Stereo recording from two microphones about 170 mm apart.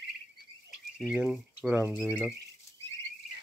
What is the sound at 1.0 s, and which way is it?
Speech, 5° right (ahead or behind).